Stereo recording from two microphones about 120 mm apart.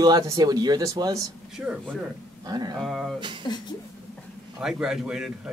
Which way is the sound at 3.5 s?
40° left (ahead or behind).